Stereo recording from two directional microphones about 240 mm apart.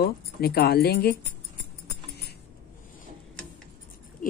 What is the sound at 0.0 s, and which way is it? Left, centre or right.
Speech, left.